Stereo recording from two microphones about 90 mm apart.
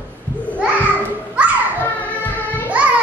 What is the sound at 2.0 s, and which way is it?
Music, 20° left (ahead or behind).